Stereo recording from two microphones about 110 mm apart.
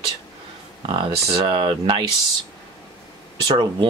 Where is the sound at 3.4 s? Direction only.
45° right (ahead or behind).